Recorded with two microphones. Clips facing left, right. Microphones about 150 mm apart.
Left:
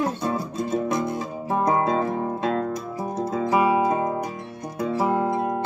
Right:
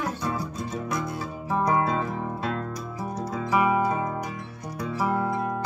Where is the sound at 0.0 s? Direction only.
30° left (ahead or behind).